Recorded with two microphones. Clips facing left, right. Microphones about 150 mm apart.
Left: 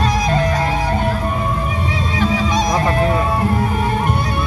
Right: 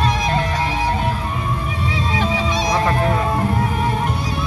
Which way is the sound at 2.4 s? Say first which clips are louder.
Left 2 dB; 45° left (ahead or behind).